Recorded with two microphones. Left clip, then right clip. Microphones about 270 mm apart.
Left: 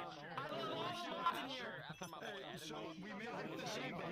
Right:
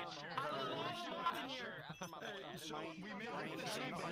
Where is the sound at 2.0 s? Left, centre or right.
Centre.